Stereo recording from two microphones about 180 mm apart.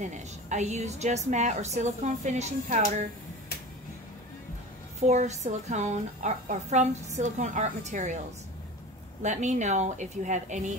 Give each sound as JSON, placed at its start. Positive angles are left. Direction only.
{"t": 0.0, "sound": "a woman's voice", "side_deg": -40}
{"t": 5.0, "sound": "a woman's voice", "side_deg": -40}
{"t": 9.2, "sound": "a woman's voice", "side_deg": -40}